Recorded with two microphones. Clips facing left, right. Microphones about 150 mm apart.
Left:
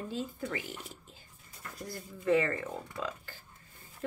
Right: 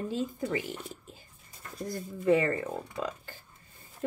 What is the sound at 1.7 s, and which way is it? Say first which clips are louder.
Speech: right 7 dB; 15° right (ahead or behind).